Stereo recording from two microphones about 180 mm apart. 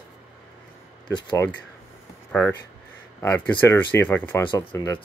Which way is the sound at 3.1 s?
15° left (ahead or behind).